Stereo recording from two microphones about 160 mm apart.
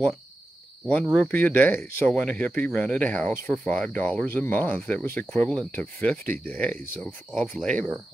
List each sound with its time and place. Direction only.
1.3 s speech: 10° left (ahead or behind)